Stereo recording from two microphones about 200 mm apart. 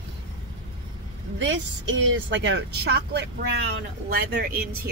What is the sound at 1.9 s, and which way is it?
Speech, 65° right (ahead or behind).